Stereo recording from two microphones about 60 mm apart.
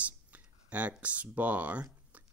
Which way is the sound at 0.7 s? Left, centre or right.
Right.